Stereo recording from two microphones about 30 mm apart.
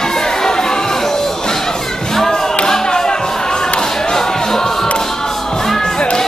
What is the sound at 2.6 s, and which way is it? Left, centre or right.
Music, left.